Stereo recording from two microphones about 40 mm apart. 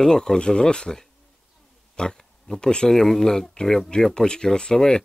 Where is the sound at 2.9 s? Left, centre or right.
Centre.